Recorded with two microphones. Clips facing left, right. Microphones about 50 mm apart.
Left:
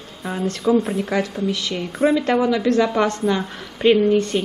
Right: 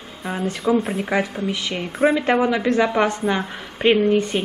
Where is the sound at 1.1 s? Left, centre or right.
Right.